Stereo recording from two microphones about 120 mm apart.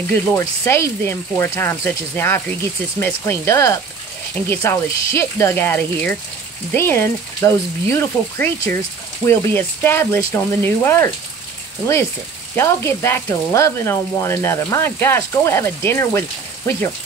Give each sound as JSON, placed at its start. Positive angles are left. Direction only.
{"t": 0.3, "sound": "speech", "side_deg": 20}
{"t": 12.5, "sound": "speech", "side_deg": 20}